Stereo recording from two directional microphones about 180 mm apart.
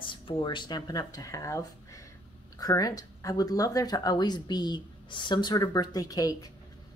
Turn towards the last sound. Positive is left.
turn(degrees=20)  # may be behind; listen again after turning